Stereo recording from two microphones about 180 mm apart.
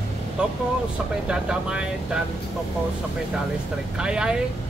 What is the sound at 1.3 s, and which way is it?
Speech, 5° right (ahead or behind).